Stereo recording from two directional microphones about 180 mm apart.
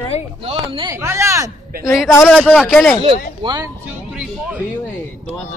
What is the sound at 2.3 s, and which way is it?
Speech, 5° left (ahead or behind).